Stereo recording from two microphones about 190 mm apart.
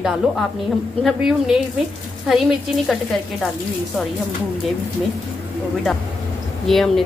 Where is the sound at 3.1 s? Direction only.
Centre (ahead or behind).